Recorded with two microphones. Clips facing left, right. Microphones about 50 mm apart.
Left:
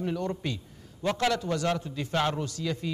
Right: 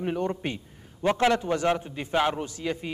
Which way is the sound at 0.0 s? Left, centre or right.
Right.